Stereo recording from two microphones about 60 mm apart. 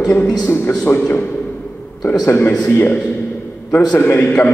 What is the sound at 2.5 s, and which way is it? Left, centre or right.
Speech, centre.